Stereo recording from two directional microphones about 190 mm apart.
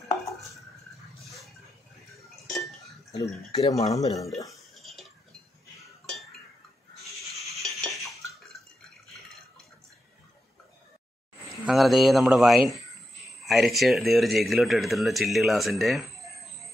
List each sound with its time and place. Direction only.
2.3 s chink: centre (ahead or behind)
3.5 s speech: 20° left (ahead or behind)
4.8 s a sound: centre (ahead or behind)
7.5 s cutlery: centre (ahead or behind)
11.6 s speech: centre (ahead or behind)